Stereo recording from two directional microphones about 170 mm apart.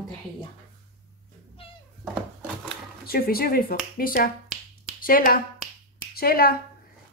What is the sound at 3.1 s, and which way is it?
Speech, 65° left (ahead or behind).